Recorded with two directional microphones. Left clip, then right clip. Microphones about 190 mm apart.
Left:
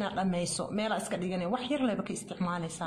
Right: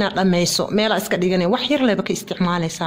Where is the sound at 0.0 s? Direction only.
60° right (ahead or behind).